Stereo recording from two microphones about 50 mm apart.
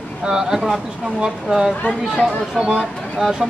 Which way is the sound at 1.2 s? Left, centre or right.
Centre.